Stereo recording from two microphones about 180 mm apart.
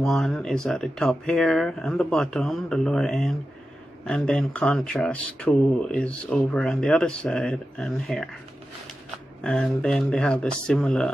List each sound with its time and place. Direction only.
0.0 s speech: centre (ahead or behind)
9.4 s speech: 5° left (ahead or behind)